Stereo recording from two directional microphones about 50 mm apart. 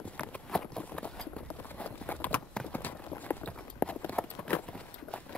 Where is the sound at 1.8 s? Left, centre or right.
Left.